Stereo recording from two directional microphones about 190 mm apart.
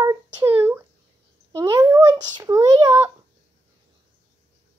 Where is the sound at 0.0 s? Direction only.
15° right (ahead or behind).